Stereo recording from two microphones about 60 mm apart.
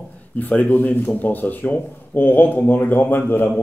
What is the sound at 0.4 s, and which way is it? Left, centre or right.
Speech, left.